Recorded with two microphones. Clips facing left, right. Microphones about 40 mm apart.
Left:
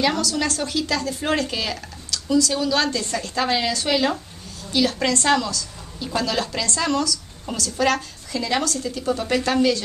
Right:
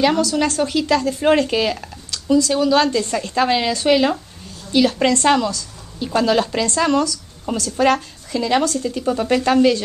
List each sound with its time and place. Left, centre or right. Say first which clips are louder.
0.0 s a woman's voice: right 5 dB; centre